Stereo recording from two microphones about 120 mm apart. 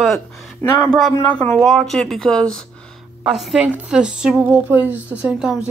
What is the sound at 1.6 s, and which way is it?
A woman's voice, centre (ahead or behind).